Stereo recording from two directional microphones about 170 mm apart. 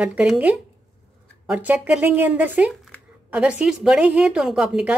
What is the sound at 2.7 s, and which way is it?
Speech, centre (ahead or behind).